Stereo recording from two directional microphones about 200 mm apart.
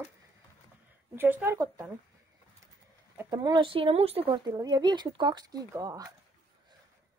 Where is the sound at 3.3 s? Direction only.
25° right (ahead or behind).